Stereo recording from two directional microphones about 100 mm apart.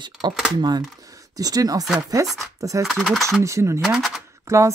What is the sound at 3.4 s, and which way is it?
Speech, 30° right (ahead or behind).